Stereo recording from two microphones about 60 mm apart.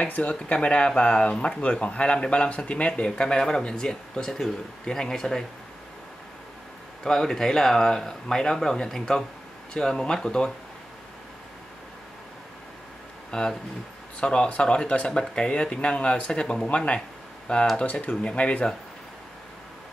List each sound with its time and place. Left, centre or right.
0.1 s speech: left
7.1 s speech: centre
13.3 s speech: centre